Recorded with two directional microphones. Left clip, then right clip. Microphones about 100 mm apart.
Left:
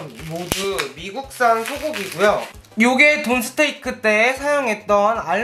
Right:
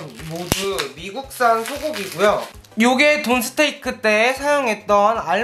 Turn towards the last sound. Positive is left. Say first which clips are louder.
# right 1 dB
turn(degrees=-5)  # may be behind; listen again after turning